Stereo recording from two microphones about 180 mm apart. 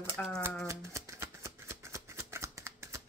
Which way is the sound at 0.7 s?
15° right (ahead or behind).